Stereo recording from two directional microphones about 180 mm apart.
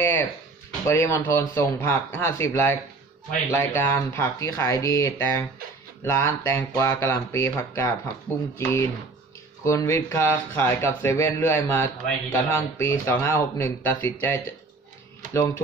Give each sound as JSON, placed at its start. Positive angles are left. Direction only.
{"t": 0.0, "sound": "a sound", "side_deg": 15}
{"t": 0.8, "sound": "speech", "side_deg": 15}
{"t": 15.3, "sound": "speech", "side_deg": 15}